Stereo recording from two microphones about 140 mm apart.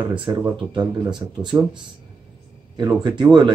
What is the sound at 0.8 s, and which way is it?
Speech, 5° right (ahead or behind).